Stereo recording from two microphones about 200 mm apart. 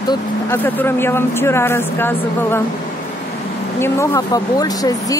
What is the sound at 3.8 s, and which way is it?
Speech, 15° left (ahead or behind).